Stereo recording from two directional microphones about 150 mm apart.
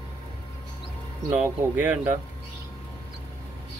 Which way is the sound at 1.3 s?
10° right (ahead or behind).